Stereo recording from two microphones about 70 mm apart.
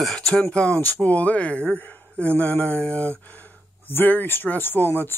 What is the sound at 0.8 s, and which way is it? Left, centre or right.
Speech, left.